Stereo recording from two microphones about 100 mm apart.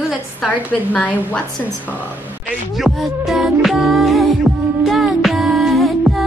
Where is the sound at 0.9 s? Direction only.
15° left (ahead or behind).